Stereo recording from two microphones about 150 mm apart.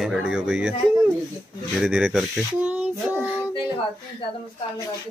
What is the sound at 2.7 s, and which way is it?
Child singing, 10° right (ahead or behind).